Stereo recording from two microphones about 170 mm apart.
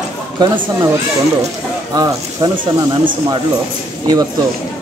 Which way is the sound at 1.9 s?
25° right (ahead or behind).